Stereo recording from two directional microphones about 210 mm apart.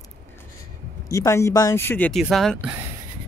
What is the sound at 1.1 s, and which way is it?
Speech, 15° left (ahead or behind).